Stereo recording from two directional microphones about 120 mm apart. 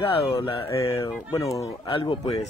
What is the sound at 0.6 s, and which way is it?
Speech, 25° left (ahead or behind).